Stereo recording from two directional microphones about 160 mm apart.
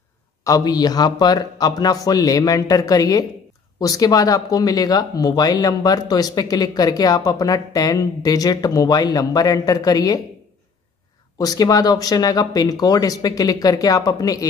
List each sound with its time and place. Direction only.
0.4 s speech: 25° left (ahead or behind)
11.3 s speech: 25° left (ahead or behind)